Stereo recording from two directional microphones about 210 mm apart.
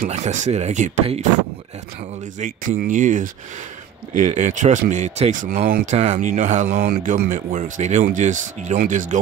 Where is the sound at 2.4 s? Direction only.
40° right (ahead or behind).